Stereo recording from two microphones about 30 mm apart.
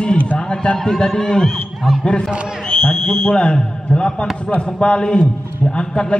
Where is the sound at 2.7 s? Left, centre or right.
Left.